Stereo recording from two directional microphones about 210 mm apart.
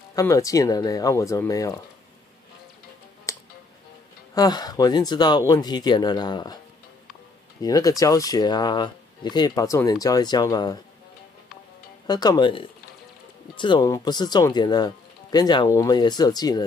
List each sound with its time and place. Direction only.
0.1 s speech: 15° left (ahead or behind)
3.3 s music: 15° left (ahead or behind)
4.4 s speech: 20° left (ahead or behind)
7.6 s speech: 15° left (ahead or behind)
12.1 s speech: 20° left (ahead or behind)